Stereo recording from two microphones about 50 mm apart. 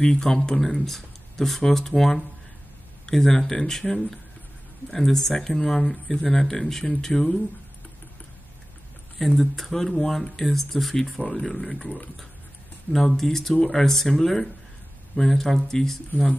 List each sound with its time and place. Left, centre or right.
0.0 s speech: centre
9.4 s speech: centre
11.1 s speech: centre
11.4 s speech: centre
12.9 s speech: centre